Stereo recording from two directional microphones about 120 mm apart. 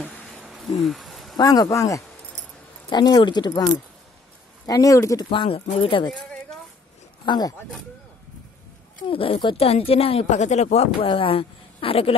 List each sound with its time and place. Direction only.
0.0 s a sound: 10° left (ahead or behind)
0.4 s a sound: centre (ahead or behind)
1.3 s speech: 30° left (ahead or behind)
2.9 s speech: 35° left (ahead or behind)
4.6 s speech: 30° left (ahead or behind)
5.3 s a woman's voice: 45° left (ahead or behind)
7.2 s speech: 35° left (ahead or behind)
9.1 s a woman's voice: 50° left (ahead or behind); by 11.1 s 65° left (ahead or behind)
11.1 s a woman's voice: 50° left (ahead or behind)